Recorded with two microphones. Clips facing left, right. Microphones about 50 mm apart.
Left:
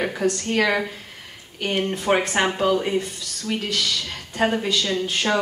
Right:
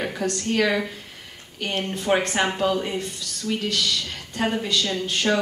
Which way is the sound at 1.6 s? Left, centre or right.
Centre.